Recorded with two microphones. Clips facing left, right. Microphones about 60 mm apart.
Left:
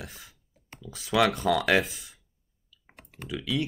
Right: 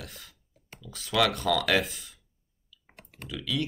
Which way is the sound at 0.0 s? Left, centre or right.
Centre.